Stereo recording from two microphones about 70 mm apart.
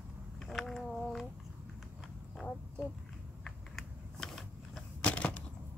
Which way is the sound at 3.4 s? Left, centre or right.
Centre.